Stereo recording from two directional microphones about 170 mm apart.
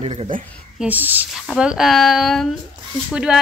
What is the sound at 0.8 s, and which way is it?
A woman's voice, 10° right (ahead or behind).